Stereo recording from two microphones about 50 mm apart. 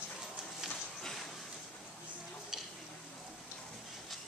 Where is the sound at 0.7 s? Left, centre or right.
Centre.